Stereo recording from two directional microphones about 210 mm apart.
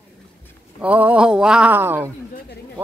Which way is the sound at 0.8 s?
5° right (ahead or behind).